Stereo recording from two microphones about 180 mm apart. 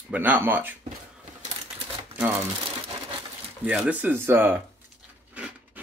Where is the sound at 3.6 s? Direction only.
5° right (ahead or behind).